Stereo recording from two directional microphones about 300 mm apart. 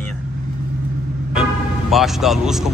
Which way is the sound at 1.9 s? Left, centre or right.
Centre.